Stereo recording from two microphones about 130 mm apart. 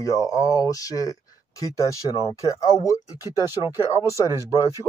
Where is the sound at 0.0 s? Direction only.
25° left (ahead or behind).